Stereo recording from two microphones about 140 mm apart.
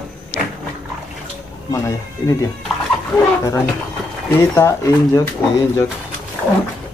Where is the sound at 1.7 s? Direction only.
20° left (ahead or behind).